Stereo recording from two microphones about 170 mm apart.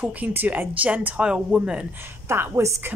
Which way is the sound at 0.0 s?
10° right (ahead or behind).